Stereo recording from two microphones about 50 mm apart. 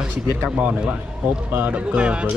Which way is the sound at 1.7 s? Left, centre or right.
Right.